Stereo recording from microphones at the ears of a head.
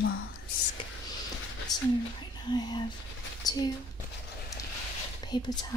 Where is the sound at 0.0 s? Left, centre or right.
Left.